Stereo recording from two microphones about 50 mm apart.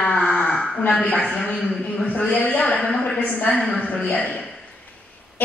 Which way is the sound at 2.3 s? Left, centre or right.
Left.